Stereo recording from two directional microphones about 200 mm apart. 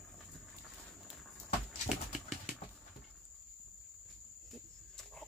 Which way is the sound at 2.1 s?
Centre (ahead or behind).